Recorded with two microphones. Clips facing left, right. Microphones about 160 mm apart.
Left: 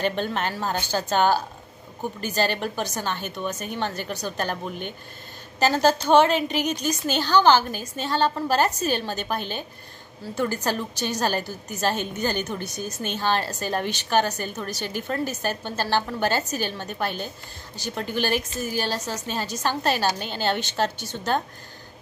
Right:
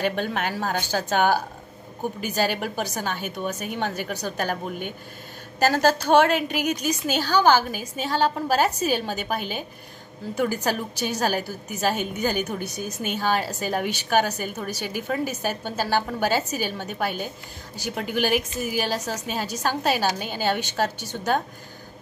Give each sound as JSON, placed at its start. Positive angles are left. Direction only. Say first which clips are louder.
{"t": 0.0, "sound": "a woman's voice", "louder": "even", "side_deg": -10}